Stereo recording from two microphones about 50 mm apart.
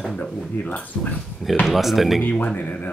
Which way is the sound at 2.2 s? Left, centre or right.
Left.